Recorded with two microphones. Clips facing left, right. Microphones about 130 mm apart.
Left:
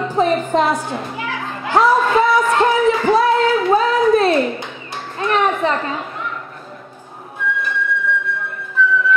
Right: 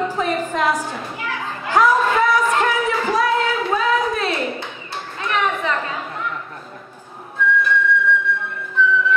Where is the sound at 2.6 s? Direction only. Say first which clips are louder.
Left 5 dB; 30° left (ahead or behind).